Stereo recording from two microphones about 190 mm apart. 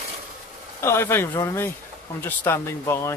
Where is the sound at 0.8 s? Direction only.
15° left (ahead or behind).